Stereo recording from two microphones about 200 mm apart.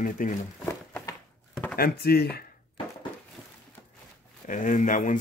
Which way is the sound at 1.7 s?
50° left (ahead or behind).